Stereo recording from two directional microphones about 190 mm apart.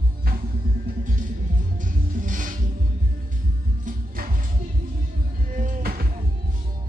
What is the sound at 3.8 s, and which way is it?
Music, 45° right (ahead or behind).